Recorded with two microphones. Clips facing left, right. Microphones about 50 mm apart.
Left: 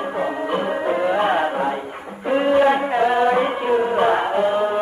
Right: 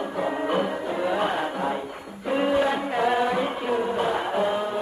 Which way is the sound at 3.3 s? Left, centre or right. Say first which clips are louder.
Left 6 dB; left.